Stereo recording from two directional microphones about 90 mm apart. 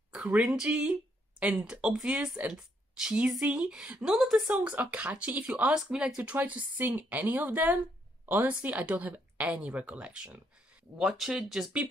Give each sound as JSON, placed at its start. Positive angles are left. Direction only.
{"t": 0.1, "sound": "speech", "side_deg": -5}
{"t": 4.6, "sound": "speech", "side_deg": -15}